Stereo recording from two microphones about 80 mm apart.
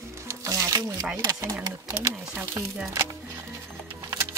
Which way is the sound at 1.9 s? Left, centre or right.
Right.